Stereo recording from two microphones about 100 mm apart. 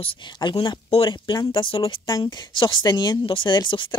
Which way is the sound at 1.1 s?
50° left (ahead or behind).